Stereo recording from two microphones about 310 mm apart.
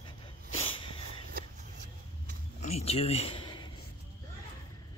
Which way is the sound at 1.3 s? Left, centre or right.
Right.